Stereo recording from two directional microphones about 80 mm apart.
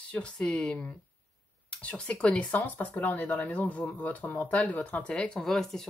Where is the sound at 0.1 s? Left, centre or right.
Centre.